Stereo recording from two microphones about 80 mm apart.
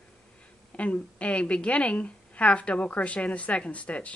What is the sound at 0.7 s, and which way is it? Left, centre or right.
Speech, centre.